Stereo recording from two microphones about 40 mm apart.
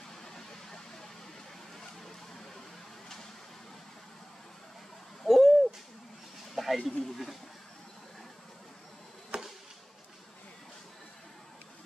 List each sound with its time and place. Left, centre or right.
5.2 s owl: centre
6.5 s a sound: centre
6.8 s speech: left
9.3 s chop: right